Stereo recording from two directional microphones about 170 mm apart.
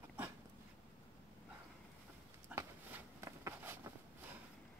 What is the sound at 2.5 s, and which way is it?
Walk, 15° right (ahead or behind).